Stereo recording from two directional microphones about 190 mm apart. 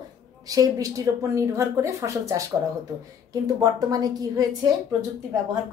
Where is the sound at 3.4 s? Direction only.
20° right (ahead or behind).